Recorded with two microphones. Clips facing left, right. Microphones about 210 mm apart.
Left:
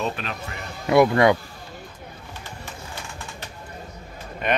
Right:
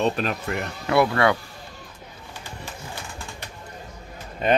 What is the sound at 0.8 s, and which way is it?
Speech, 15° left (ahead or behind).